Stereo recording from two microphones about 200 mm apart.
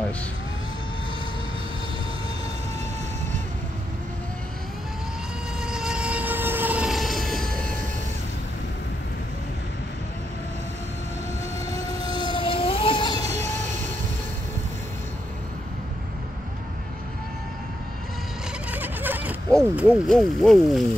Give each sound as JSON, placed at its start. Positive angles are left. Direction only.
{"t": 5.6, "sound": "train", "side_deg": -5}
{"t": 11.7, "sound": "vehicle", "side_deg": 20}
{"t": 18.7, "sound": "a sound", "side_deg": -10}
{"t": 19.7, "sound": "speech", "side_deg": -5}